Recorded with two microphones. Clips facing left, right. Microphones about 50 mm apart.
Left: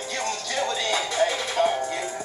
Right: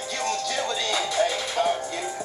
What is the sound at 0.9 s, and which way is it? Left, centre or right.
Music, centre.